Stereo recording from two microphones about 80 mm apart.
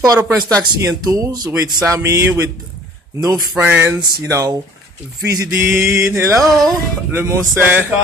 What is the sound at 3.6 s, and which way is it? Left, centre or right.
Mantra, right.